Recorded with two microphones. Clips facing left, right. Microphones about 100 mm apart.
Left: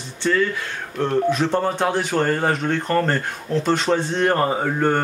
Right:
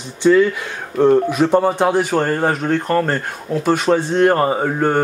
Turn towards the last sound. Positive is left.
turn(degrees=-10)  # may be behind; listen again after turning